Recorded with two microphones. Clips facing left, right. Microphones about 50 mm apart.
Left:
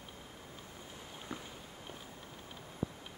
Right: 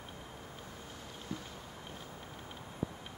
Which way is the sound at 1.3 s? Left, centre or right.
Left.